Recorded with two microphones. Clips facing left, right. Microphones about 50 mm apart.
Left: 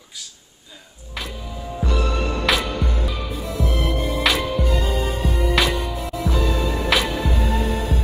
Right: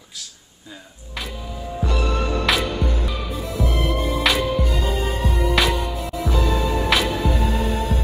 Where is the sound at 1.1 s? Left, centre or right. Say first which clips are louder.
Even; centre.